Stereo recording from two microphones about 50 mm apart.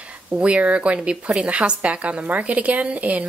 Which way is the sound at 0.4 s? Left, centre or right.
Right.